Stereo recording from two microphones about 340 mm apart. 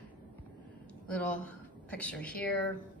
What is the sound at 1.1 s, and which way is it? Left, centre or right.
A woman's voice, centre.